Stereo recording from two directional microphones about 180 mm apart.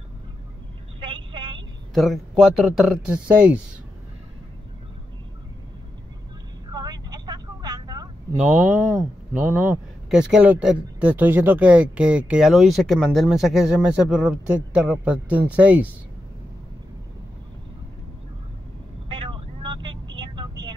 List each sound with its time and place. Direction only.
1.0 s vehicle: 30° right (ahead or behind)
2.0 s speech: centre (ahead or behind)
6.7 s vehicle: 20° right (ahead or behind)
8.4 s speech: 10° right (ahead or behind)
19.0 s vehicle: 30° right (ahead or behind)